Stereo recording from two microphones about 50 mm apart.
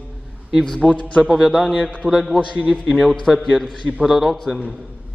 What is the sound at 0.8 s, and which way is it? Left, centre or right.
Speech, left.